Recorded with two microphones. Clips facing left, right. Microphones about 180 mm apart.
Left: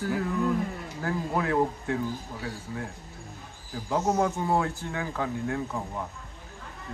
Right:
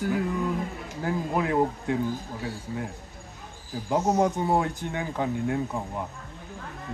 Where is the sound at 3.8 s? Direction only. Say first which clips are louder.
Right 2 dB; 15° right (ahead or behind).